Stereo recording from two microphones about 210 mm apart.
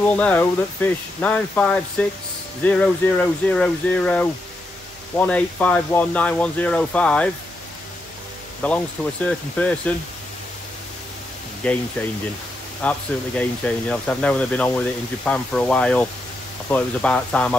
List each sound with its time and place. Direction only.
0.0 s speech: 5° left (ahead or behind)
8.6 s speech: 5° left (ahead or behind)
11.6 s speech: 5° left (ahead or behind)
12.8 s speech: 5° left (ahead or behind)